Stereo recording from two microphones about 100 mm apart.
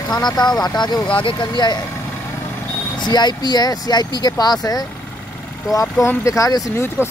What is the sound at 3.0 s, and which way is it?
Speech, 45° left (ahead or behind).